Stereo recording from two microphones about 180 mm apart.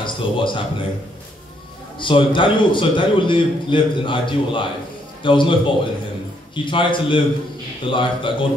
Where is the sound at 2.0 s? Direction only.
25° left (ahead or behind).